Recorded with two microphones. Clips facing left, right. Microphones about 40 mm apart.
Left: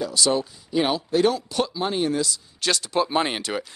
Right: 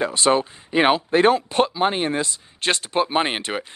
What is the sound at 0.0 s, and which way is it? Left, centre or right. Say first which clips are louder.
Speech: right 4 dB; right.